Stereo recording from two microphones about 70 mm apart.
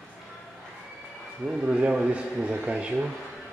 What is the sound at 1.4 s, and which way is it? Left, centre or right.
Speech, centre.